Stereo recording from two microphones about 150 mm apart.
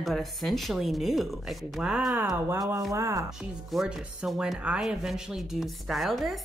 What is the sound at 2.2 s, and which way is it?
Speech, 20° right (ahead or behind).